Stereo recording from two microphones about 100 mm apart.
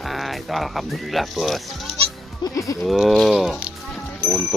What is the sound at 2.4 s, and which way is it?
Speech, 35° left (ahead or behind).